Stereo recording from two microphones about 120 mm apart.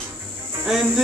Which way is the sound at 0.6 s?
5° right (ahead or behind).